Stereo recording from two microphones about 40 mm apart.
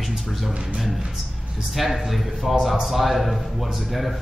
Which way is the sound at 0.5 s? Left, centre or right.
Right.